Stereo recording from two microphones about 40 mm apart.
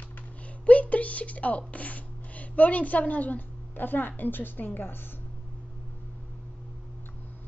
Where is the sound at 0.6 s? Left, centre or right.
Left.